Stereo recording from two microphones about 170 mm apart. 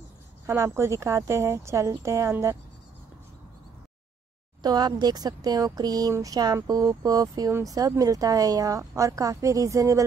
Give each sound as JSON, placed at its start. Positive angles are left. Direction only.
{"t": 0.5, "sound": "speech", "side_deg": -15}
{"t": 4.6, "sound": "speech", "side_deg": -25}